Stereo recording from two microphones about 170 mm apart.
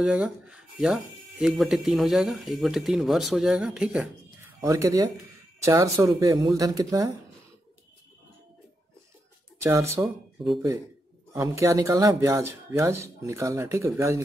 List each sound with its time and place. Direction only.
0.0 s speech: 5° right (ahead or behind)
4.6 s speech: 20° right (ahead or behind)
9.6 s speech: 15° right (ahead or behind)
9.9 s speech: 5° right (ahead or behind)
11.3 s speech: 15° right (ahead or behind)